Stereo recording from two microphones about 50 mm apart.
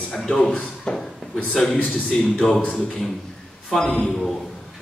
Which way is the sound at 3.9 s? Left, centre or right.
Centre.